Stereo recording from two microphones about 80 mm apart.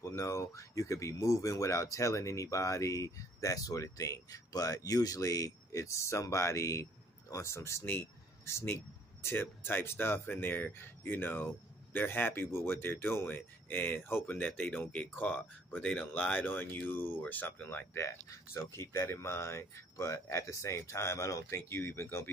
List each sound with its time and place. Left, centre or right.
0.0 s speech: left
18.3 s speech: left